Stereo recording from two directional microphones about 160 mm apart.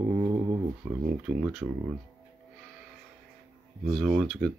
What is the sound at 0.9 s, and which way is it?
Speech, 15° right (ahead or behind).